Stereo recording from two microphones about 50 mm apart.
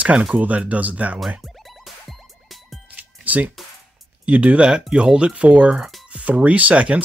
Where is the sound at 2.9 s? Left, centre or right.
Right.